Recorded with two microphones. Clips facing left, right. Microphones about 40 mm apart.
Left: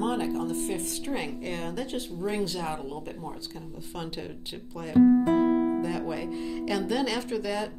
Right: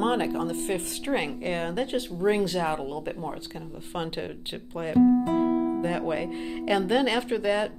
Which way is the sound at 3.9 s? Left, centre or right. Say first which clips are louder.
Right 5 dB; right.